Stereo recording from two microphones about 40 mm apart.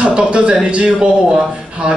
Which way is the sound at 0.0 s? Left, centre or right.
Right.